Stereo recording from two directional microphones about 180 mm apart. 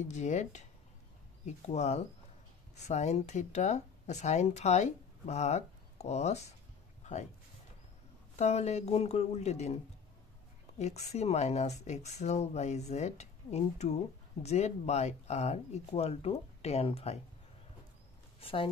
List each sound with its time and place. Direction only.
0.1 s speech: 40° left (ahead or behind)
7.0 s a sound: 40° left (ahead or behind)
8.4 s speech: 40° left (ahead or behind)
10.8 s speech: 35° left (ahead or behind)
18.4 s speech: 30° left (ahead or behind)